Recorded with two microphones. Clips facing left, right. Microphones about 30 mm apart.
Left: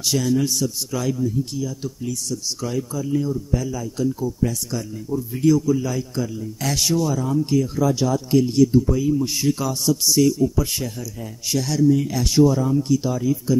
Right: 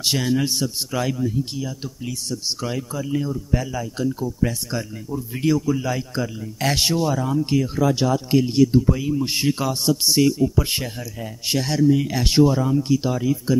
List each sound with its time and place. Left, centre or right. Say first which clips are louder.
0.0 s a man's voice: left 1 dB; right